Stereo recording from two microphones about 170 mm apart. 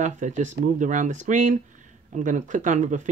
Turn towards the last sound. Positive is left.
turn(degrees=-45)  # may be behind; listen again after turning